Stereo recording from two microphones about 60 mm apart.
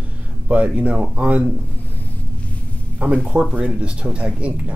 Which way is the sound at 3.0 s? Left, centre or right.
Right.